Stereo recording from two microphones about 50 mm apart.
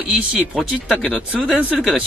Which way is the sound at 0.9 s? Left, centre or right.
Right.